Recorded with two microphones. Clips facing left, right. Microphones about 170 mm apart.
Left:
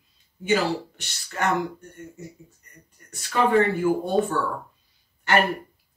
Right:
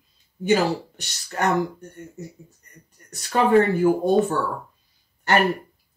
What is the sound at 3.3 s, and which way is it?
Speech, 40° right (ahead or behind).